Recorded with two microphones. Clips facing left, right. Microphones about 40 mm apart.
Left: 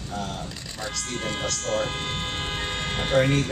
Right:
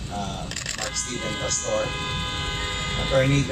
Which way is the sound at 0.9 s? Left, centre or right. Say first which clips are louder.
Left 4 dB; centre.